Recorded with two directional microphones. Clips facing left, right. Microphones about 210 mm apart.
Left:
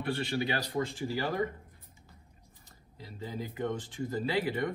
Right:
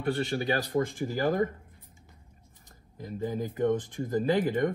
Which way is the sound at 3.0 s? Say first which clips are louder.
Right 7 dB; 45° right (ahead or behind).